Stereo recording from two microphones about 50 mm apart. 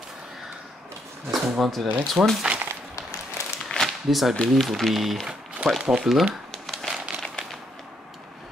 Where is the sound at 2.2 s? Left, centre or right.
Right.